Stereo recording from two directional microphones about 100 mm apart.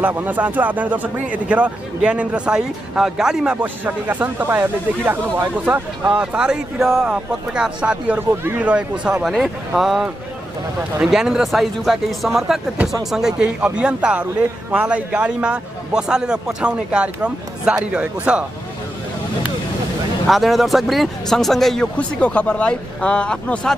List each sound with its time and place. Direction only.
0.0 s a man's voice: 20° right (ahead or behind)
3.6 s a man's voice: 15° right (ahead or behind)
9.2 s a man's voice: centre (ahead or behind)
20.2 s speech: centre (ahead or behind)
21.9 s speech: 10° left (ahead or behind)